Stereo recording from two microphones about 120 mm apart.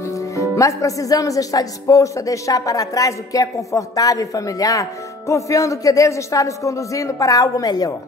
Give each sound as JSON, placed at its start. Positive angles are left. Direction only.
{"t": 0.0, "sound": "speech", "side_deg": 25}